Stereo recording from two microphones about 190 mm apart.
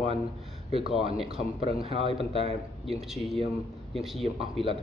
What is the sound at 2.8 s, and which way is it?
Speech, centre (ahead or behind).